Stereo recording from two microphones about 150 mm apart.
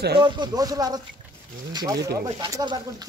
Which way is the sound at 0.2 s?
25° right (ahead or behind).